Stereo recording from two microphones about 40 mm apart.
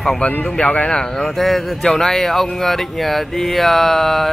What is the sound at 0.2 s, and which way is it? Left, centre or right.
Speech, left.